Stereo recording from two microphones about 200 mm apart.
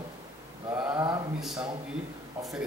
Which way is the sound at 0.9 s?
20° right (ahead or behind).